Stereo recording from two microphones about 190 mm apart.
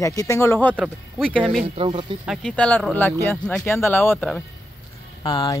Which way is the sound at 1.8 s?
25° right (ahead or behind).